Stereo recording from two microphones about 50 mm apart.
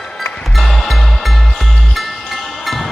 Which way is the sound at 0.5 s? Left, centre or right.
Centre.